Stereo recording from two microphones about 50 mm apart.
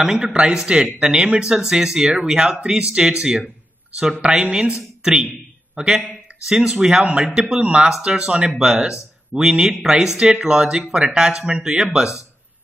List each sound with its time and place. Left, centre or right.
0.0 s a woman's voice: centre
5.8 s a woman's voice: centre